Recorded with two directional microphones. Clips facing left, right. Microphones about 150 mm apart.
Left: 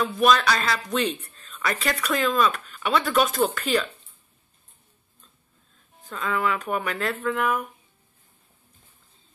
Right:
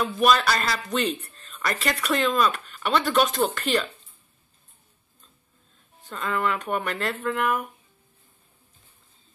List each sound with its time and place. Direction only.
0.0 s speech: centre (ahead or behind)
6.0 s speech: centre (ahead or behind)